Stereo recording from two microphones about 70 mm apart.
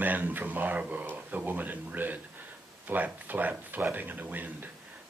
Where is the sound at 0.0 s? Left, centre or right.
Right.